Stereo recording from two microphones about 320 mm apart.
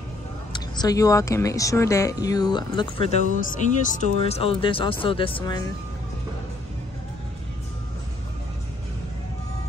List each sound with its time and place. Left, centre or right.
0.5 s speech: centre